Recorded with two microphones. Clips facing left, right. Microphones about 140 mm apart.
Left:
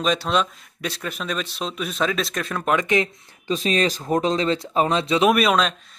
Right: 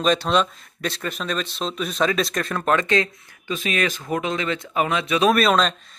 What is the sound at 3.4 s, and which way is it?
Speech, 35° left (ahead or behind).